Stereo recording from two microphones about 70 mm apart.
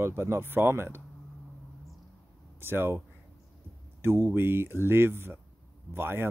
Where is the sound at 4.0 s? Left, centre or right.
Right.